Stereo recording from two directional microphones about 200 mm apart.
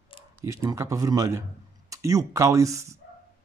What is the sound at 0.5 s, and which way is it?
Speech, 15° right (ahead or behind).